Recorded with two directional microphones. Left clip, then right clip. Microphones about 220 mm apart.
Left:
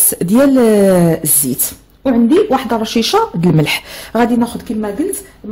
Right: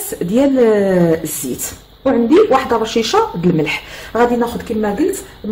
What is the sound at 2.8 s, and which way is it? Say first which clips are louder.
Speech: left 1 dB; 40° left (ahead or behind).